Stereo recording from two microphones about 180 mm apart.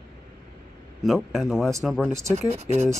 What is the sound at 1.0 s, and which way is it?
Speech, centre (ahead or behind).